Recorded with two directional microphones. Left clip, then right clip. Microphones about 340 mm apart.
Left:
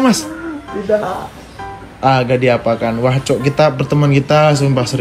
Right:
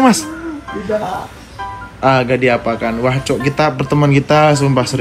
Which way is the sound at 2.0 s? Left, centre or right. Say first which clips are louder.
Even; centre.